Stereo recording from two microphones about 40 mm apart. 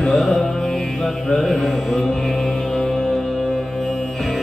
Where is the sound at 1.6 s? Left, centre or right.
Centre.